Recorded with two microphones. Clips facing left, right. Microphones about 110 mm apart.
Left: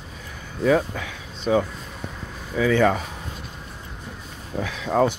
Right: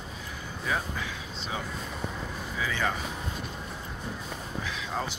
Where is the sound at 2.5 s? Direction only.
70° left (ahead or behind).